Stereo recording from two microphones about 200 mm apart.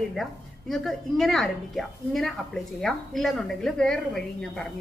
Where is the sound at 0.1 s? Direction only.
Centre (ahead or behind).